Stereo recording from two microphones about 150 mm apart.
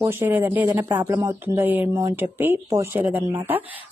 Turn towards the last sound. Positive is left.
turn(degrees=-10)  # may be behind; listen again after turning